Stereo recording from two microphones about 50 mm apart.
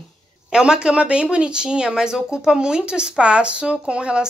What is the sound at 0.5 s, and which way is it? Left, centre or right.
Speech, centre.